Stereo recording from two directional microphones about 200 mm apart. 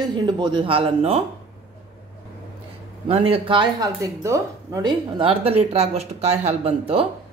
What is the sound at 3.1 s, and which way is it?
A woman's voice, 30° right (ahead or behind).